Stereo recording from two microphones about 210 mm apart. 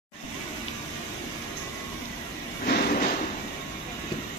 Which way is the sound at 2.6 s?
40° left (ahead or behind).